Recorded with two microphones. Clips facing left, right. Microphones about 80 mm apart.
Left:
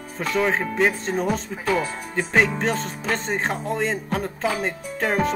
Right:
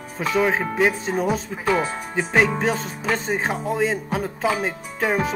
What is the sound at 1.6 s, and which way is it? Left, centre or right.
Speech, right.